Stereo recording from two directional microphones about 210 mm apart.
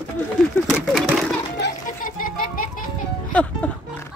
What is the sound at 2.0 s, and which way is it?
Speech, 40° left (ahead or behind).